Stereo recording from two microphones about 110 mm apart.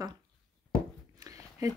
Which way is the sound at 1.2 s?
30° right (ahead or behind).